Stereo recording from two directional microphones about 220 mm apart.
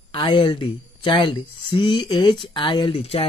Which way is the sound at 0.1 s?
20° left (ahead or behind).